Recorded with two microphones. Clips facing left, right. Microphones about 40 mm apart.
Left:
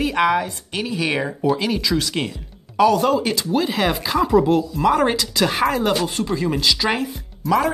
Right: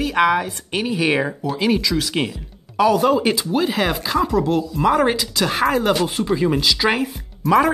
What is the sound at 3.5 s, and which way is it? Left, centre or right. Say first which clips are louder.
Speech: even; centre.